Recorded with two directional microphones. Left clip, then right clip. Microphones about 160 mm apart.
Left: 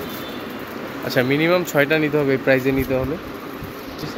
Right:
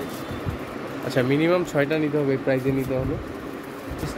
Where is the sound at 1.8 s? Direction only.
5° left (ahead or behind).